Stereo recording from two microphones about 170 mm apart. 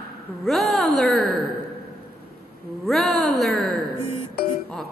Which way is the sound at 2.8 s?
Centre (ahead or behind).